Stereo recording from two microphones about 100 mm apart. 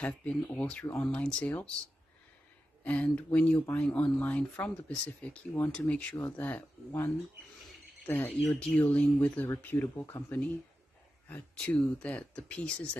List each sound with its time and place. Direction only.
0.0 s speech: 15° left (ahead or behind)
2.8 s speech: 15° left (ahead or behind)
8.3 s speech: 5° left (ahead or behind)
11.5 s speech: 10° left (ahead or behind)